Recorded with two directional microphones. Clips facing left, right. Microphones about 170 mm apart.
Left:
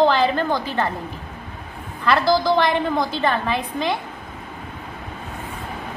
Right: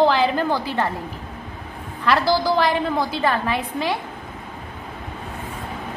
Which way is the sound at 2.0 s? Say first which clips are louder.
Left 1 dB; 5° right (ahead or behind).